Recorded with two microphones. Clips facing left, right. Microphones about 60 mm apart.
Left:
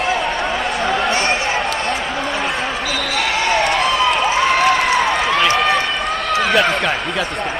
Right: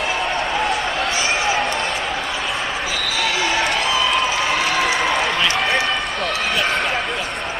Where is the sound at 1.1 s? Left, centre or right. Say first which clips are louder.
Left 3 dB; left.